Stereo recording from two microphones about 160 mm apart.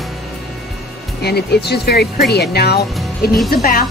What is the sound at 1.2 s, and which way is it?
Speech, 90° left.